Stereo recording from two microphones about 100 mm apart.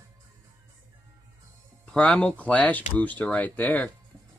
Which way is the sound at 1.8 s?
5° left (ahead or behind).